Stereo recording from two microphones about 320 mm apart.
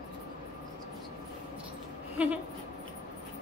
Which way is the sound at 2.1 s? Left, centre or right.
Centre.